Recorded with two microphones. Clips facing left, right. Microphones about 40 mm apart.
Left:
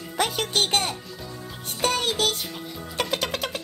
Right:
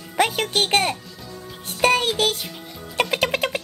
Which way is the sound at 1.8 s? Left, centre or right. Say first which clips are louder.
Right 6 dB; right.